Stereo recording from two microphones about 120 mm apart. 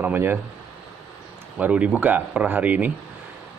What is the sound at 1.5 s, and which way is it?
A man's voice, 10° right (ahead or behind).